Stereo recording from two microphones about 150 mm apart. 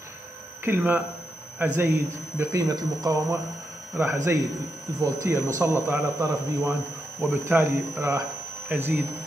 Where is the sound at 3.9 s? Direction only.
10° right (ahead or behind).